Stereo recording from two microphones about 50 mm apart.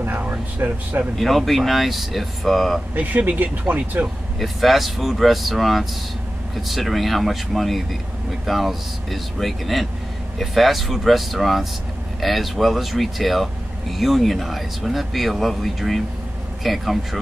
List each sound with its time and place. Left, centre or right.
0.0 s air conditioning: right
1.1 s speech: centre
2.9 s speech: right
4.4 s speech: centre